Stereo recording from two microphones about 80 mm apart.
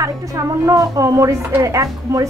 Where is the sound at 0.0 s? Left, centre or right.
Right.